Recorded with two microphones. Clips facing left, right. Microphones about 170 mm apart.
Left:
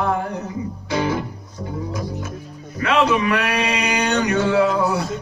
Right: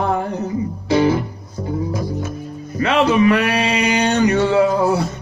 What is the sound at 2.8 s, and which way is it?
Male singing, 30° right (ahead or behind).